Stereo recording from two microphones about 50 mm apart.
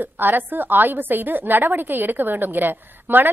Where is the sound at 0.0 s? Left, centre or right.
Right.